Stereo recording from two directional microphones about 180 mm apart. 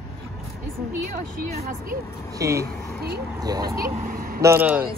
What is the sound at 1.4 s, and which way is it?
Speech, 55° right (ahead or behind).